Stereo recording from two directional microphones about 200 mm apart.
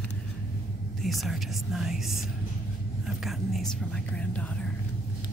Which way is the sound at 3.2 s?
Centre (ahead or behind).